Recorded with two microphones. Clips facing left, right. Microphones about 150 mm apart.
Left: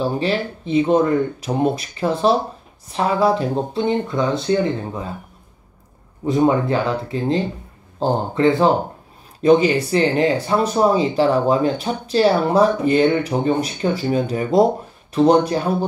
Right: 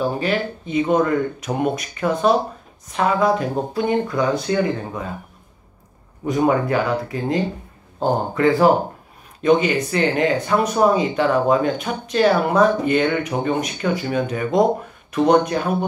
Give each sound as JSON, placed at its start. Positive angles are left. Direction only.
{"t": 0.0, "sound": "speech", "side_deg": 30}
{"t": 6.2, "sound": "speech", "side_deg": 25}
{"t": 9.4, "sound": "speech", "side_deg": 35}